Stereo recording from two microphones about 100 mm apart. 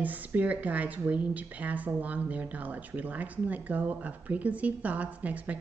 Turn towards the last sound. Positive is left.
turn(degrees=-15)  # may be behind; listen again after turning